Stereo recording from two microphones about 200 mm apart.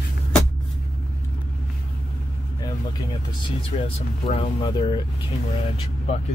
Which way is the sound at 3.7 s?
30° left (ahead or behind).